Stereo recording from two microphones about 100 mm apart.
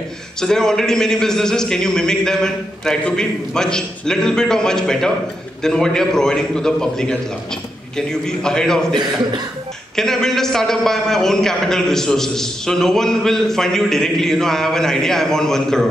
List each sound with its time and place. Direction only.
0.4 s a man's voice: 5° left (ahead or behind)
8.3 s a man's voice: 5° left (ahead or behind)
9.9 s a man's voice: 5° left (ahead or behind)